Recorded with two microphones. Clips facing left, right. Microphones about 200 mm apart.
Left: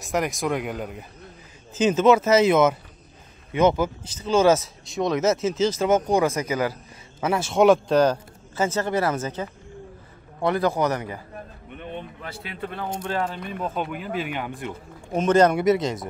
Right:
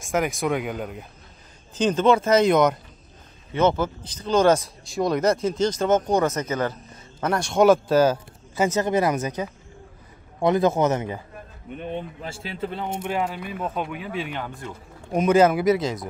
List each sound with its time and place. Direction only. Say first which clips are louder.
0.0 s speech: right 1 dB; centre (ahead or behind)
8.5 s a man's voice: right 2 dB; 15° right (ahead or behind)
12.2 s speech: right 3 dB; 30° right (ahead or behind); by 14.7 s 15° left (ahead or behind)
15.1 s speech: right 1 dB; 10° right (ahead or behind)